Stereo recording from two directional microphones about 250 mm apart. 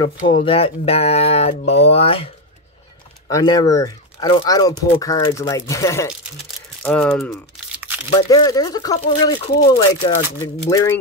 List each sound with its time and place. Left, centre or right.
0.3 s speech: left; by 7.3 s centre
8.1 s speech: centre